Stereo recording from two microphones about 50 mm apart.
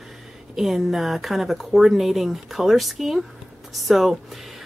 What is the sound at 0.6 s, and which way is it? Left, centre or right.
Speech, centre.